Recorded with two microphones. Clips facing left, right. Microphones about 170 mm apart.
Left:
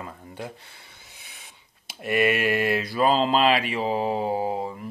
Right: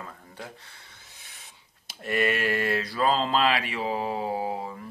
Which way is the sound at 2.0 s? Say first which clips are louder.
Left 4 dB; 10° left (ahead or behind).